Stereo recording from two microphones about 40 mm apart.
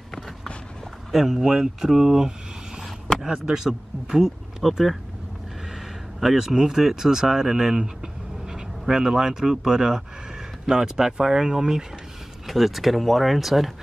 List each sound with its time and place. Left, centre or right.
1.1 s speech: centre
3.3 s speech: centre
6.1 s speech: centre
12.4 s speech: centre